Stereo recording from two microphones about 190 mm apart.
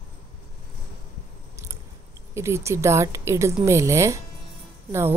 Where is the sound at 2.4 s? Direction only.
15° right (ahead or behind).